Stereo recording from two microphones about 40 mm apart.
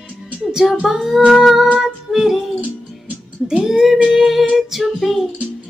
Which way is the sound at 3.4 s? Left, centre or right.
Centre.